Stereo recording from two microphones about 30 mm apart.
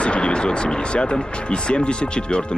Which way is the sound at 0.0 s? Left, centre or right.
Left.